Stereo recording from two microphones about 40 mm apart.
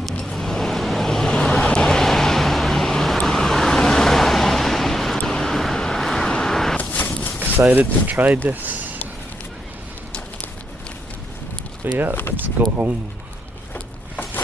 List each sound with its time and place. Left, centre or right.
0.2 s vehicle: centre
1.3 s vehicle: left
6.3 s artillery fire: centre
6.8 s a sound: left
7.7 s speech: right
11.8 s speech: right
12.6 s speech: right